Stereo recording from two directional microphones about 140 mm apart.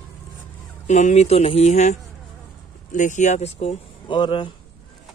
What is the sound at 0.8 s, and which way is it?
Speech, 55° left (ahead or behind).